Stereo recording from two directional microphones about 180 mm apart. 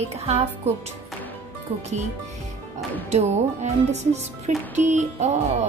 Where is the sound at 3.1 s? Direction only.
40° right (ahead or behind).